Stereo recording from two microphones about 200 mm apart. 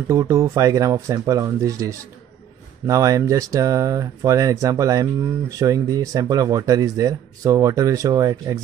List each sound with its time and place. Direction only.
0.1 s speech: 15° right (ahead or behind)